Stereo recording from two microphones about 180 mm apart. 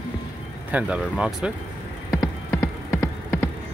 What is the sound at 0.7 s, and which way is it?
Speech, 5° right (ahead or behind).